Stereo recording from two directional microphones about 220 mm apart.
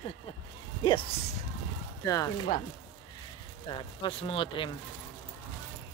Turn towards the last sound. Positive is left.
turn(degrees=25)  # may be behind; listen again after turning